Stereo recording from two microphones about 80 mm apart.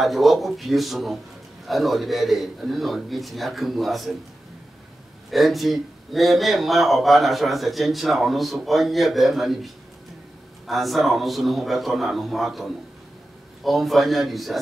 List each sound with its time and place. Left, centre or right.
0.0 s speech: centre
5.3 s speech: centre
10.7 s speech: centre